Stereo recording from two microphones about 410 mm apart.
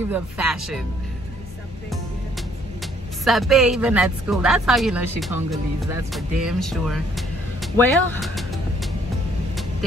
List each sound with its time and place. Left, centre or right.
0.1 s speech: centre
3.3 s speech: centre